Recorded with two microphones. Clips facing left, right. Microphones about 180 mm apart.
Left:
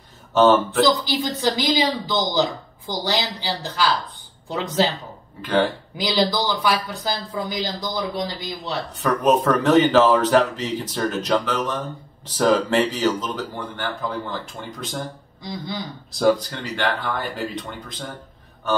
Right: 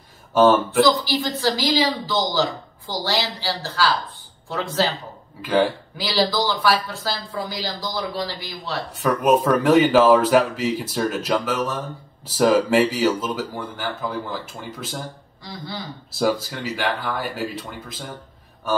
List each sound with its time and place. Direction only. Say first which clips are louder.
0.3 s speech: even; 10° right (ahead or behind)
1.0 s speech: even; 20° left (ahead or behind)
5.4 s speech: right 1 dB; 10° right (ahead or behind)
5.9 s speech: left 1 dB; 20° left (ahead or behind)
9.0 s speech: right 1 dB; 10° right (ahead or behind)
15.4 s speech: left 3 dB; 20° left (ahead or behind)
16.1 s speech: left 3 dB; 5° right (ahead or behind)